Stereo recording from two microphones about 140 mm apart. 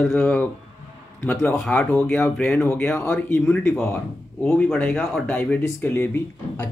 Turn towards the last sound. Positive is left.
turn(degrees=15)  # may be behind; listen again after turning